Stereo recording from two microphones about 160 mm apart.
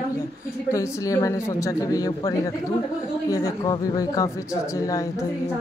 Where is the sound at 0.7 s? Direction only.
20° left (ahead or behind).